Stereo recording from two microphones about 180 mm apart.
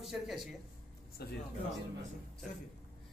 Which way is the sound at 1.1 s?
60° left (ahead or behind).